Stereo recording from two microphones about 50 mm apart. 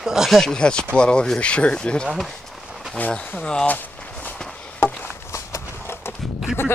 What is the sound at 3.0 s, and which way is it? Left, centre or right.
Speech, left.